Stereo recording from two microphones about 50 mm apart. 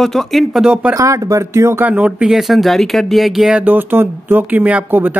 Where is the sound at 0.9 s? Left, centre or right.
Right.